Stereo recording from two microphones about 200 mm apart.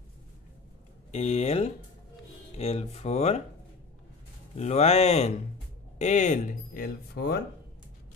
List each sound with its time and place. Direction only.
1.1 s speech: 35° left (ahead or behind)
4.6 s speech: 35° left (ahead or behind); by 7.3 s 50° left (ahead or behind)